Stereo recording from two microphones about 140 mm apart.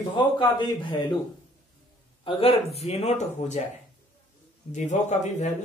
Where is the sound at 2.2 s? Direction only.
45° left (ahead or behind).